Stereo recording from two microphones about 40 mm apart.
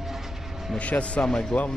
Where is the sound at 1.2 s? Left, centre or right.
Centre.